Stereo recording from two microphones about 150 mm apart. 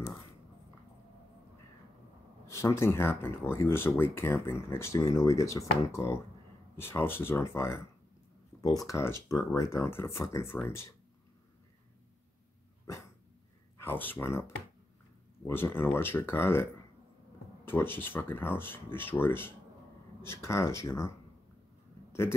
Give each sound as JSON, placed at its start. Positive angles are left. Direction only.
{"t": 2.4, "sound": "speech", "side_deg": 20}
{"t": 12.9, "sound": "dog", "side_deg": 20}
{"t": 13.7, "sound": "speech", "side_deg": 15}
{"t": 15.4, "sound": "speech", "side_deg": 15}
{"t": 17.6, "sound": "speech", "side_deg": 15}